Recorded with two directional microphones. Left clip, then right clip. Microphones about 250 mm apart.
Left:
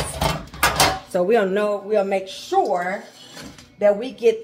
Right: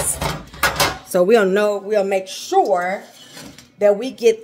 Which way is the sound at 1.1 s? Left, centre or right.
Right.